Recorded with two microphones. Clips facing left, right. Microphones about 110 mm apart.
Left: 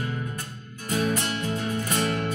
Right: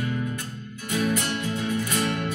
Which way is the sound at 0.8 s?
45° left (ahead or behind).